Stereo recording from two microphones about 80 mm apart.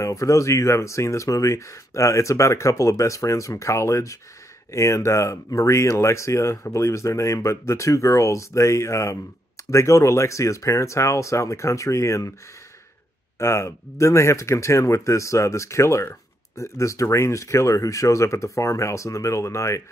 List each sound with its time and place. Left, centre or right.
0.0 s speech: left
13.4 s speech: left